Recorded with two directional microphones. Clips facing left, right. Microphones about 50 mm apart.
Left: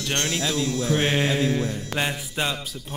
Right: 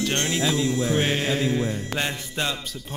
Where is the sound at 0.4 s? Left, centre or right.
Right.